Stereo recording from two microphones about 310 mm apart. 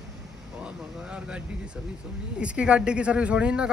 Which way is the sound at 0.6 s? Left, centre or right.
Centre.